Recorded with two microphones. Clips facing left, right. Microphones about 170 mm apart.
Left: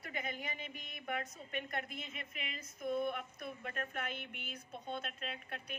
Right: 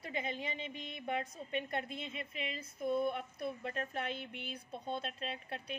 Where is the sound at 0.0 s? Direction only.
25° right (ahead or behind).